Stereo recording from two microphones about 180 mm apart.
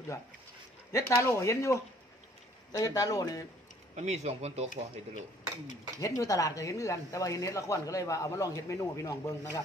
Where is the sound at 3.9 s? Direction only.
40° right (ahead or behind).